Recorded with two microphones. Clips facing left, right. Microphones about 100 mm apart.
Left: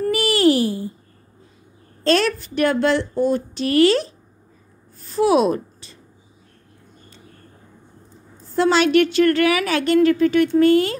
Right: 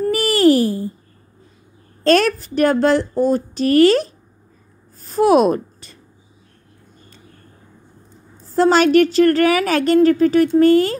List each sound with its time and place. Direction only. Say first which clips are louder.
0.1 s a sound: right 3 dB; 40° right (ahead or behind)
2.0 s speech: right 4 dB; 45° right (ahead or behind)
8.5 s speech: right 3 dB; 45° right (ahead or behind)